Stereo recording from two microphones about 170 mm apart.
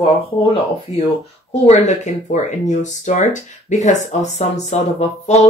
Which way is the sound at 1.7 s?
40° left (ahead or behind).